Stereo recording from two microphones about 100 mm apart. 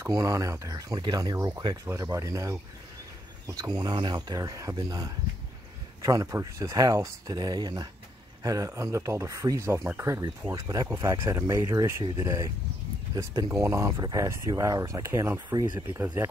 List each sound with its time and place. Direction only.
0.0 s speech: 35° right (ahead or behind)
10.5 s speech: 35° right (ahead or behind)
13.5 s speech: 30° right (ahead or behind)
15.5 s speech: 45° right (ahead or behind)